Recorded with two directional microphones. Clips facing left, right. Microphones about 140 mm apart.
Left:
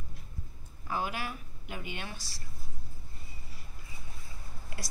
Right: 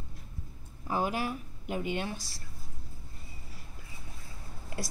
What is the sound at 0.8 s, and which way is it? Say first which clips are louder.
Speech: right 4 dB; 30° right (ahead or behind).